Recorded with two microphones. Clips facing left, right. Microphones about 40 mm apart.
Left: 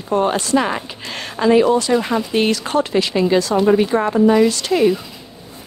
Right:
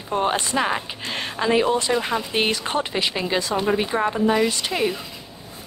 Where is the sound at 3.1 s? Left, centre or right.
Centre.